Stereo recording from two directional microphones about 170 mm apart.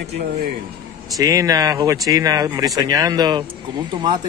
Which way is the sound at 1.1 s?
20° right (ahead or behind).